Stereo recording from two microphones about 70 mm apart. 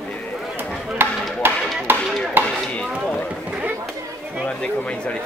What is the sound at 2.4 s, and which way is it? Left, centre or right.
Chop, right.